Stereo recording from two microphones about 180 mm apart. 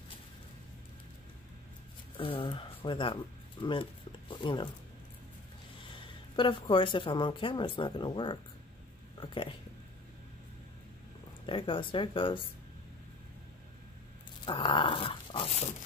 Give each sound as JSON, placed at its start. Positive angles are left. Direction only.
{"t": 2.1, "sound": "speech", "side_deg": 30}
{"t": 5.8, "sound": "speech", "side_deg": 25}
{"t": 11.4, "sound": "speech", "side_deg": 30}
{"t": 14.4, "sound": "dog", "side_deg": 25}